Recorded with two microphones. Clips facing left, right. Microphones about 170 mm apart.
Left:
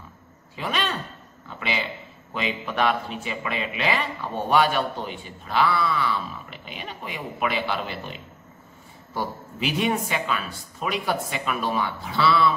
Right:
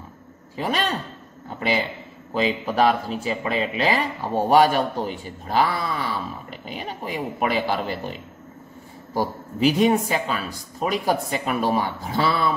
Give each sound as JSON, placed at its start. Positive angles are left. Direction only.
{"t": 0.6, "sound": "a man's voice", "side_deg": -40}